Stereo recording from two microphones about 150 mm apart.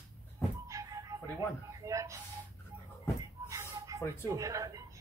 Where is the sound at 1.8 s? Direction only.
20° right (ahead or behind).